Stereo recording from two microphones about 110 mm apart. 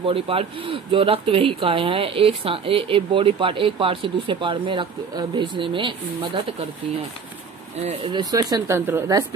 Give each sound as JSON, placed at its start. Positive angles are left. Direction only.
{"t": 0.0, "sound": "speech", "side_deg": -60}
{"t": 8.1, "sound": "speech", "side_deg": -40}
{"t": 8.7, "sound": "a woman's voice", "side_deg": -20}